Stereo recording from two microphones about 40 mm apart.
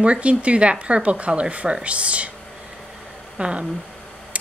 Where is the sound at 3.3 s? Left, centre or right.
Right.